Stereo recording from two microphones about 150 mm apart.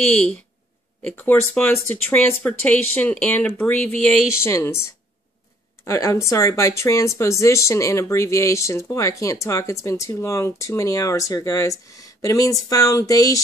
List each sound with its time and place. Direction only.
0.0 s speech: 5° left (ahead or behind)
5.9 s speech: 20° left (ahead or behind)